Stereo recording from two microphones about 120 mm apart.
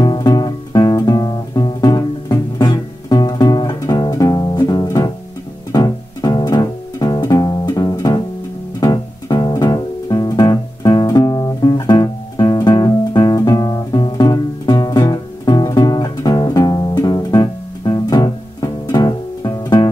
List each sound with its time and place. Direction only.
0.0 s guitar: 35° left (ahead or behind)
5.7 s music: 35° left (ahead or behind)